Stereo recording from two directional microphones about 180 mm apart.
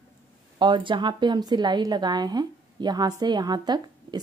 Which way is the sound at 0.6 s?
25° right (ahead or behind).